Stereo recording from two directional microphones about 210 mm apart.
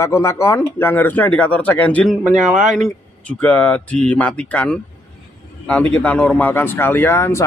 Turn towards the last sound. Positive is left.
turn(degrees=10)  # may be behind; listen again after turning